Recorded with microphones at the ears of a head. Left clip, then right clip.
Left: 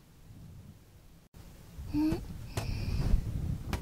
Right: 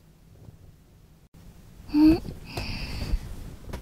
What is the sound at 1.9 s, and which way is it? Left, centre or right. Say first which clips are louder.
Wheeze: right 12 dB; right.